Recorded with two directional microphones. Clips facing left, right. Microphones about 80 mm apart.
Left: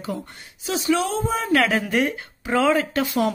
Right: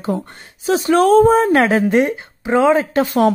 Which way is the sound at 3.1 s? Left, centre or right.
Right.